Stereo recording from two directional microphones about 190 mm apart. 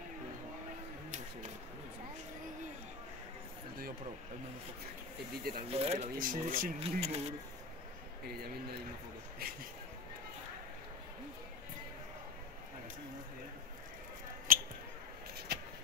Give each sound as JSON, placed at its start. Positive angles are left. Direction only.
{"t": 5.3, "sound": "speech", "side_deg": -55}
{"t": 5.7, "sound": "speech", "side_deg": -35}
{"t": 6.8, "sound": "speech", "side_deg": -35}
{"t": 14.5, "sound": "mouse", "side_deg": -45}
{"t": 15.3, "sound": "a sound", "side_deg": -55}